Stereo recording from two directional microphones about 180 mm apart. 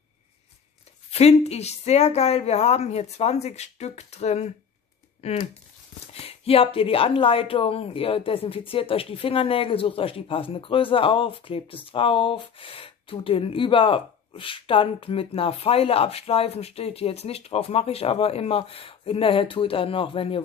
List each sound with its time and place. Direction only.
1.1 s a woman's voice: 35° left (ahead or behind)